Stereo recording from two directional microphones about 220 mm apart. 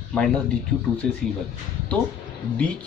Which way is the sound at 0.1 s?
5° left (ahead or behind).